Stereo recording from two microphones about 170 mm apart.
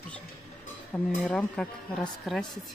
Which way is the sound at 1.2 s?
5° left (ahead or behind).